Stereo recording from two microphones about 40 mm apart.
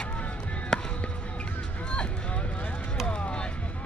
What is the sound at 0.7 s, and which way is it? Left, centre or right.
Basketball bounce, centre.